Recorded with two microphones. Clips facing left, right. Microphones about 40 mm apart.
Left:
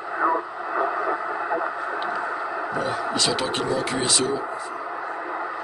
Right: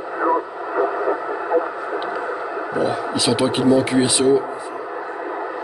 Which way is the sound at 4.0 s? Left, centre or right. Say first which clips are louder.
Right 8 dB; right.